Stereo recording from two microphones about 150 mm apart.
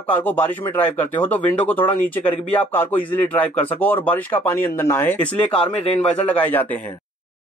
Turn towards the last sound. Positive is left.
turn(degrees=10)  # may be behind; listen again after turning